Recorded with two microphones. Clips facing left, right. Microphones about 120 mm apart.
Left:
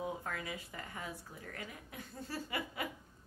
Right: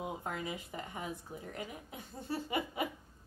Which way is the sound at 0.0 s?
20° right (ahead or behind).